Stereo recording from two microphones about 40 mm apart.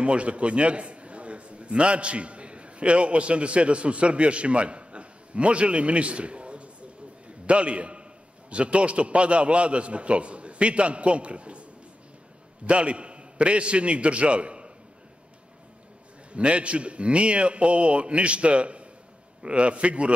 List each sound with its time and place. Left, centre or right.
0.0 s a man's voice: right
7.2 s a sound: right
8.5 s a man's voice: right
12.6 s a man's voice: right
16.3 s a man's voice: right